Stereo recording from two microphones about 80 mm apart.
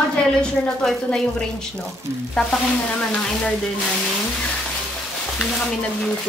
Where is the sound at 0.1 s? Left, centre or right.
Centre.